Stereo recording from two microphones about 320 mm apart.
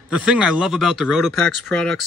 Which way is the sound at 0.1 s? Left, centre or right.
Centre.